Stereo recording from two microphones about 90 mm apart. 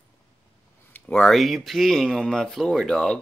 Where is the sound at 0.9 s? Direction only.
15° left (ahead or behind).